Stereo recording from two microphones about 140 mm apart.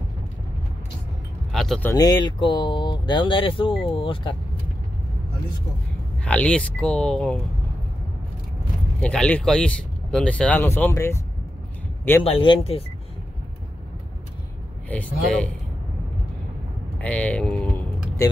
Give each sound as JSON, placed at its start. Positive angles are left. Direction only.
{"t": 1.5, "sound": "vehicle", "side_deg": 0}
{"t": 2.0, "sound": "speech", "side_deg": 30}
{"t": 6.2, "sound": "speech", "side_deg": 10}
{"t": 9.0, "sound": "speech", "side_deg": 5}
{"t": 12.2, "sound": "speech", "side_deg": 40}
{"t": 14.9, "sound": "speech", "side_deg": 10}
{"t": 17.0, "sound": "speech", "side_deg": 10}